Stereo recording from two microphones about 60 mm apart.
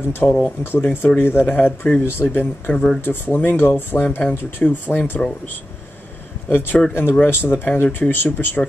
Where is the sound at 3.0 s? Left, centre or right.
Left.